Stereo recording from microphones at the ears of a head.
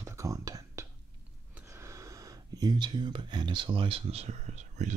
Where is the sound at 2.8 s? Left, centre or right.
Right.